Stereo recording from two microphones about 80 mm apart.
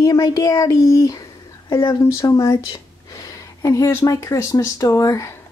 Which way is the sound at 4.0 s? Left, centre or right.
Left.